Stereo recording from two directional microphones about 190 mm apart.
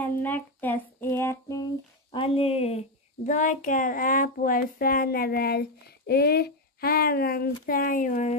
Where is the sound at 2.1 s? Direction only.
30° left (ahead or behind).